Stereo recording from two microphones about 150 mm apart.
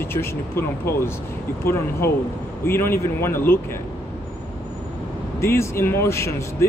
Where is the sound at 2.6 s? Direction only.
15° left (ahead or behind).